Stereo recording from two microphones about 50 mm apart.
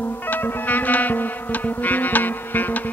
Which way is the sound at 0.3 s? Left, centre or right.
Left.